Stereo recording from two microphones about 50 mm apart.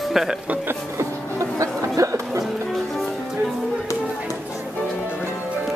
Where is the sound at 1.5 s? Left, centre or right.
Right.